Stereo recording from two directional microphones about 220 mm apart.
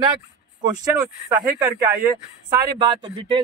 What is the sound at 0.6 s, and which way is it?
Speech, 15° right (ahead or behind).